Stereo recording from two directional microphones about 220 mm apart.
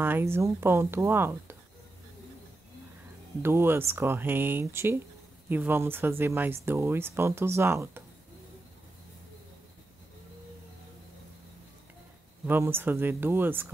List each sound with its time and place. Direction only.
0.0 s speech: 10° right (ahead or behind)
3.4 s speech: 10° right (ahead or behind)
12.4 s speech: 10° right (ahead or behind)